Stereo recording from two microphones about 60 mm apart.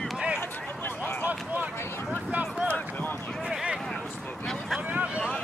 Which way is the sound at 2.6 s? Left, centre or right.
Left.